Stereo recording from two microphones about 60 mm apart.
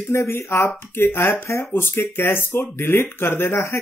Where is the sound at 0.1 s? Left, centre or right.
Left.